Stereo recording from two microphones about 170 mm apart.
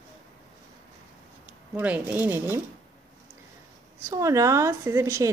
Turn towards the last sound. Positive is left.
turn(degrees=-15)  # may be behind; listen again after turning